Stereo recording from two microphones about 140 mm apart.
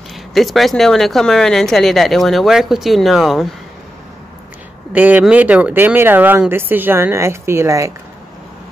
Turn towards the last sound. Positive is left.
turn(degrees=-20)  # may be behind; listen again after turning